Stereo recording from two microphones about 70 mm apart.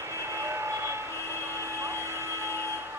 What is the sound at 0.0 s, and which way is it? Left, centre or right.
Train, right.